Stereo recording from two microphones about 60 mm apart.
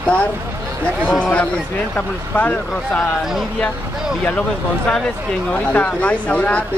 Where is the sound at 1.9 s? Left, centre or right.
Left.